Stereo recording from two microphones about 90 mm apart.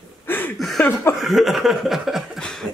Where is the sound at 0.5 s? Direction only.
5° left (ahead or behind).